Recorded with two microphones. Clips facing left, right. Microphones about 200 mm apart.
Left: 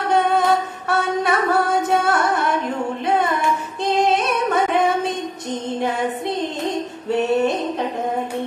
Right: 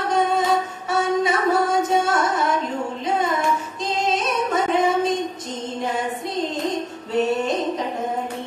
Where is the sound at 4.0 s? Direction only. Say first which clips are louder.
Left 2 dB; 60° left (ahead or behind).